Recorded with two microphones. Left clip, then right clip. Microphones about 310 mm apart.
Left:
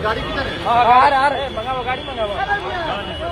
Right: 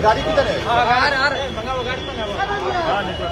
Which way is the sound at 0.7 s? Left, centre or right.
Centre.